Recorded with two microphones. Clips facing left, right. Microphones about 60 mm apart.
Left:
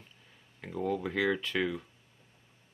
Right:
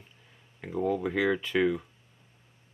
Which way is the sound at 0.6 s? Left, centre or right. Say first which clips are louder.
Right 4 dB; centre.